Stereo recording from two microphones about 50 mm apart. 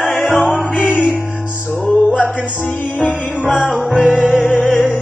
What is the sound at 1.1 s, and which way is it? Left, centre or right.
Music, left.